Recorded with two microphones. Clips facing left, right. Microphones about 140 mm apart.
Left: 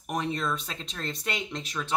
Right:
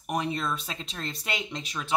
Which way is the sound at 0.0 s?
5° right (ahead or behind).